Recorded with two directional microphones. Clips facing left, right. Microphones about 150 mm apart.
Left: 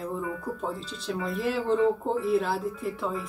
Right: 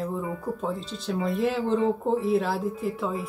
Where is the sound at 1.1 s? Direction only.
Centre (ahead or behind).